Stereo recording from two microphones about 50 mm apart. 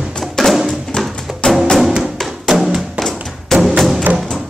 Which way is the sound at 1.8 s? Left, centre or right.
Centre.